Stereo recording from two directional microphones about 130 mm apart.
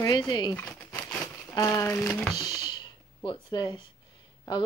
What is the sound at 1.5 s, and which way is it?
Crumpling, 25° left (ahead or behind).